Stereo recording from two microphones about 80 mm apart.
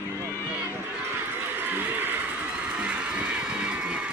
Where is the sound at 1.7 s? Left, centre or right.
Right.